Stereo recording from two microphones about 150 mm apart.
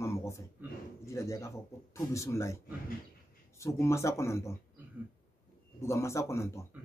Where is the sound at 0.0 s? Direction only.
20° left (ahead or behind).